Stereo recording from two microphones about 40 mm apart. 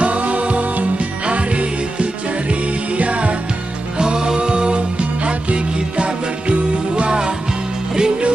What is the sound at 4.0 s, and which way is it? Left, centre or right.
Music, right.